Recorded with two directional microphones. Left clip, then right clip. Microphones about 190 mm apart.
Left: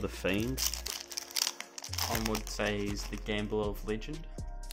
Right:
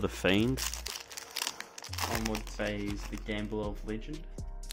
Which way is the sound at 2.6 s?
65° left (ahead or behind).